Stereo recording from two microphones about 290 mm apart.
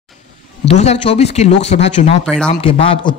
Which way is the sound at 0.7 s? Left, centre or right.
Left.